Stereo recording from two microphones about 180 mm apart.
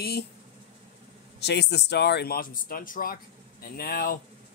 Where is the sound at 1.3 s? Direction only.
70° left (ahead or behind).